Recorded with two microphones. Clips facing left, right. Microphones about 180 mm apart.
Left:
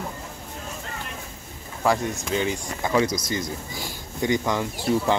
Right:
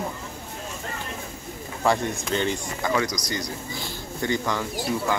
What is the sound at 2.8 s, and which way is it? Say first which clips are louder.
Speech: left 4 dB; 25° left (ahead or behind).